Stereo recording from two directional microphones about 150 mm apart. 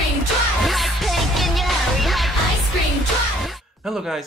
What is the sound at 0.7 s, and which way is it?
Music, centre (ahead or behind).